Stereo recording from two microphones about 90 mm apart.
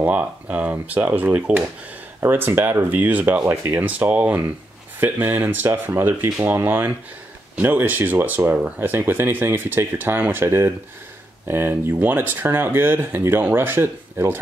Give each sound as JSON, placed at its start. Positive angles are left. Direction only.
{"t": 0.0, "sound": "speech", "side_deg": -15}